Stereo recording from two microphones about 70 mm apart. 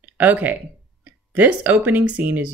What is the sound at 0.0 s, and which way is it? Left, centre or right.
Speech, right.